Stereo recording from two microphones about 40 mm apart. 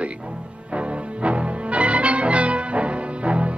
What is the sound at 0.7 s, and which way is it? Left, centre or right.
Music, right.